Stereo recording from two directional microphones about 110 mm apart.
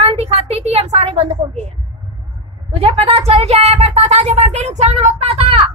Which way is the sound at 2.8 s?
65° right (ahead or behind).